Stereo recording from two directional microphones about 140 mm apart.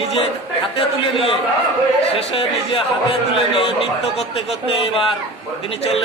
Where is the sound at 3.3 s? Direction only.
45° left (ahead or behind).